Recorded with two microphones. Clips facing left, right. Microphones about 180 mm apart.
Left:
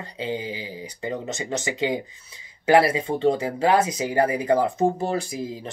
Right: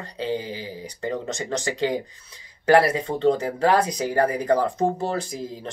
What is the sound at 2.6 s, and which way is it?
Speech, 10° left (ahead or behind).